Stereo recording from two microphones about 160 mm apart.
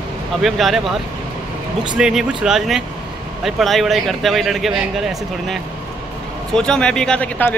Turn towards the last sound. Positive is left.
turn(degrees=10)  # may be behind; listen again after turning